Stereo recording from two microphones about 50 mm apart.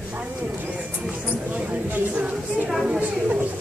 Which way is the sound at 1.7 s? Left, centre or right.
Right.